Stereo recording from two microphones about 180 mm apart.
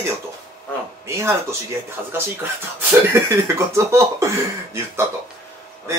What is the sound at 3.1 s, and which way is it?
Speech, 15° right (ahead or behind).